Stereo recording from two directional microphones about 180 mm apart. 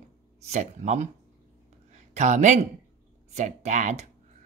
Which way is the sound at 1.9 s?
40° right (ahead or behind).